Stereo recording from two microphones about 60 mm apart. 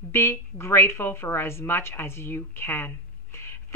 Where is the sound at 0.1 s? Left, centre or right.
Left.